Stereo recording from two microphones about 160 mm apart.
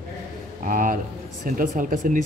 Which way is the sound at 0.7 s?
55° right (ahead or behind).